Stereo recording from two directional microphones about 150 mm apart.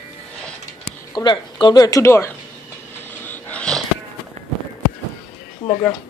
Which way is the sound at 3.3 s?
10° left (ahead or behind).